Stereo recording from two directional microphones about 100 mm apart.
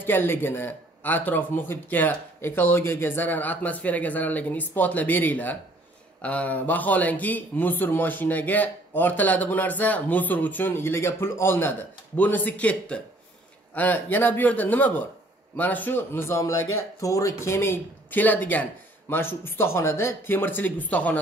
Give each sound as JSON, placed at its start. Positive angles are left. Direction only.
{"t": 0.0, "sound": "speech", "side_deg": 20}
{"t": 18.1, "sound": "speech", "side_deg": 15}